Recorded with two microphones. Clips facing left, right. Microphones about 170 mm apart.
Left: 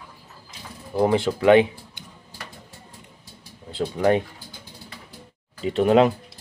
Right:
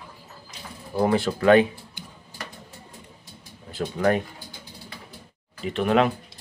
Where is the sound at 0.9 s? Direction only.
15° left (ahead or behind).